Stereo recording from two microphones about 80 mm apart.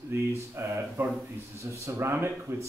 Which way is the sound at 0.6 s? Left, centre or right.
Right.